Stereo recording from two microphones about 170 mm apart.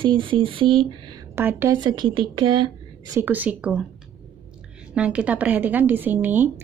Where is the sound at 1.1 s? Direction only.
15° right (ahead or behind).